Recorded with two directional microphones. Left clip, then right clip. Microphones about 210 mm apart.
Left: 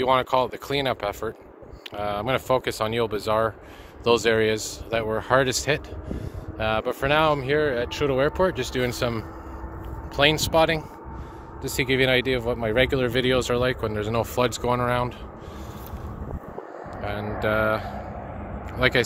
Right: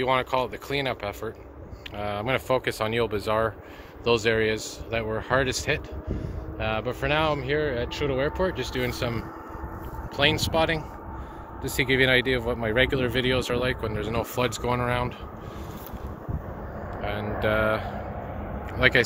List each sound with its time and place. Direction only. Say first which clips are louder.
0.0 s speech: left 3 dB; 20° left (ahead or behind)
4.0 s speech: left 3 dB; 25° left (ahead or behind)
11.6 s speech: even; 20° left (ahead or behind)
17.4 s speech: left 1 dB; 20° left (ahead or behind)